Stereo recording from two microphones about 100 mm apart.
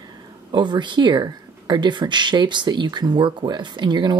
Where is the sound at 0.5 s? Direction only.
50° right (ahead or behind).